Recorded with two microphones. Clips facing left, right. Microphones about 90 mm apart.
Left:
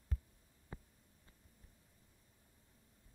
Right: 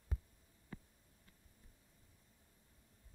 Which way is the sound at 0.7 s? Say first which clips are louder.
Even; 25° left (ahead or behind).